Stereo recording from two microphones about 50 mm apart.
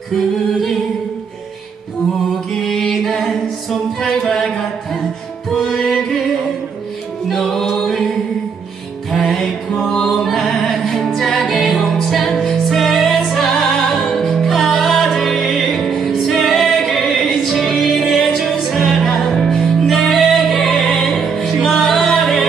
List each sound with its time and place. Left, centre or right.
0.1 s music: centre
2.5 s a capella: centre
5.5 s music: centre
7.2 s music: centre
9.1 s mantra: centre
10.0 s music: centre